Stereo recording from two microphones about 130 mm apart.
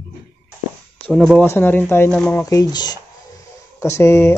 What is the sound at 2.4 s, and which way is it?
Speech, 25° left (ahead or behind).